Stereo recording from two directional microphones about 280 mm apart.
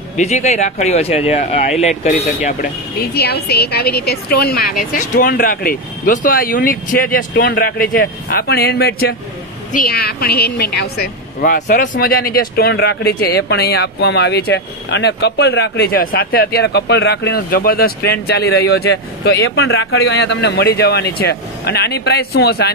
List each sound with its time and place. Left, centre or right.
0.2 s a woman's voice: left